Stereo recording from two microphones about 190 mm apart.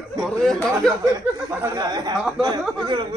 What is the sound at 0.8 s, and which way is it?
Speech, 20° right (ahead or behind).